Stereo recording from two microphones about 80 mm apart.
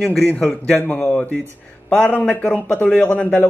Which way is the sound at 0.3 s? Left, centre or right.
Centre.